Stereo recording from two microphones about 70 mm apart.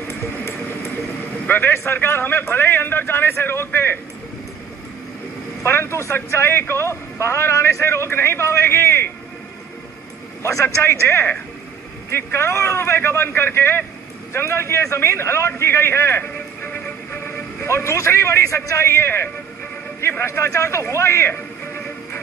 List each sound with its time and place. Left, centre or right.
1.5 s speech: left
5.6 s speech: left
10.4 s speech: left
16.6 s music: left
20.0 s a sound: left